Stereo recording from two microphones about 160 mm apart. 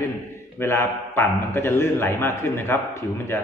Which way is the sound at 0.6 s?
15° left (ahead or behind).